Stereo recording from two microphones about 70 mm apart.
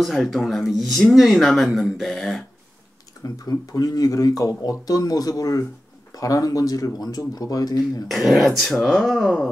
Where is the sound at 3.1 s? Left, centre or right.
Left.